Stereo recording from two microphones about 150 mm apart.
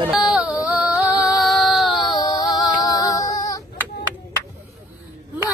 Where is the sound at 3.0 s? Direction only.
25° left (ahead or behind).